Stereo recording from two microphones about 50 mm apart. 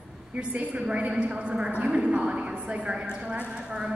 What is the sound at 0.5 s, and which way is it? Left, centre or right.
A man's voice, right.